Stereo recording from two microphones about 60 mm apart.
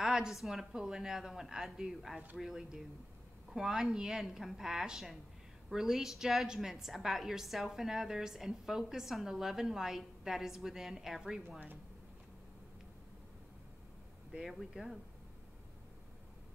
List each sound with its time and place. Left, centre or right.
0.0 s a woman's voice: centre
14.4 s a woman's voice: centre